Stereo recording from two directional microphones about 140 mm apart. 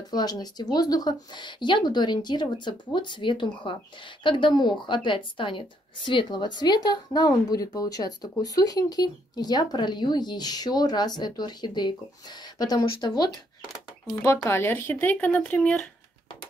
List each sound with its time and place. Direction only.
0.1 s a woman's voice: 30° left (ahead or behind); by 15.8 s 10° left (ahead or behind)